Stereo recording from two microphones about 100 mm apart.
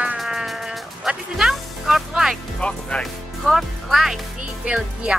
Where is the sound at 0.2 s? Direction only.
5° right (ahead or behind).